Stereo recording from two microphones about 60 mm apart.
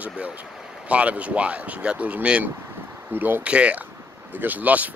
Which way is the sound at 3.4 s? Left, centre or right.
Centre.